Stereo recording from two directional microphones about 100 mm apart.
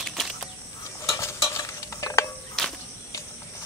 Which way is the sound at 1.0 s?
30° left (ahead or behind).